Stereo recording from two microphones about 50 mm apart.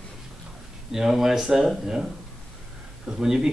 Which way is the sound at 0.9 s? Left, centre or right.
Centre.